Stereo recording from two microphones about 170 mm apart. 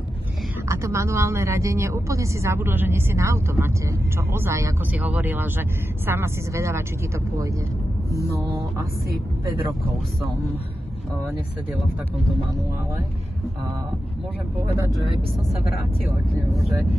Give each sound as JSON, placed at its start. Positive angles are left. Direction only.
{"t": 0.7, "sound": "speech", "side_deg": -15}